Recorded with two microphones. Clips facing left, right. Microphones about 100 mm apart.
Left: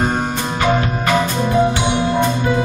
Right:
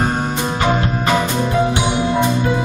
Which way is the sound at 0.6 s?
15° right (ahead or behind).